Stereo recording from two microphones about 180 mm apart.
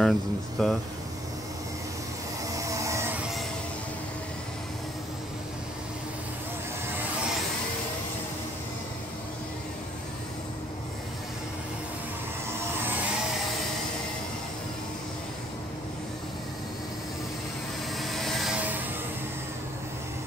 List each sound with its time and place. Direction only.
0.0 s speech: centre (ahead or behind)
2.5 s a sound: 15° right (ahead or behind)
17.9 s vehicle: centre (ahead or behind)